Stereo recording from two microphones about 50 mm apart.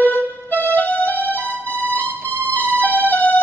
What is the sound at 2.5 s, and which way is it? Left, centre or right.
Music, left.